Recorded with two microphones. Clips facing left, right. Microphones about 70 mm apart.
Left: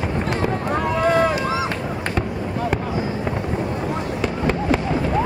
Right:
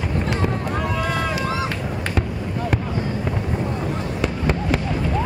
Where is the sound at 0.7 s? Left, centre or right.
Left.